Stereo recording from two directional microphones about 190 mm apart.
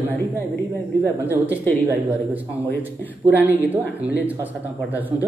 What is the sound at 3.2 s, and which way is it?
Speech, 10° right (ahead or behind).